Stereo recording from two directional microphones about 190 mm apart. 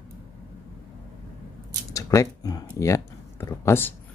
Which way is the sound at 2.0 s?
15° left (ahead or behind).